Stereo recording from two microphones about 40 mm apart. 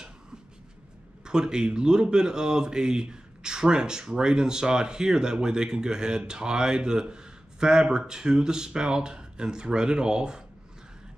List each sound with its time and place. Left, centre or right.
1.2 s speech: centre